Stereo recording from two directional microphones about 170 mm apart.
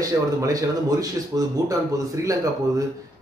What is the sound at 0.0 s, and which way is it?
Speech, 20° right (ahead or behind).